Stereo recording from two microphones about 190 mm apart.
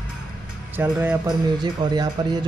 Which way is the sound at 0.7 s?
5° right (ahead or behind).